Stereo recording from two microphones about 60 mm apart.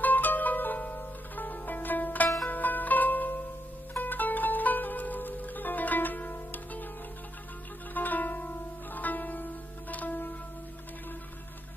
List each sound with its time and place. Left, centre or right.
0.0 s zither: left
3.9 s music: left
7.9 s music: left